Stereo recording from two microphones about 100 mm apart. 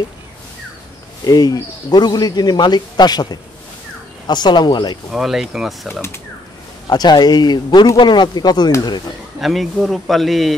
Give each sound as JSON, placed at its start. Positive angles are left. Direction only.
{"t": 1.2, "sound": "speech", "side_deg": 40}
{"t": 5.1, "sound": "speech", "side_deg": -5}
{"t": 6.9, "sound": "speech", "side_deg": 45}
{"t": 9.4, "sound": "speech", "side_deg": 0}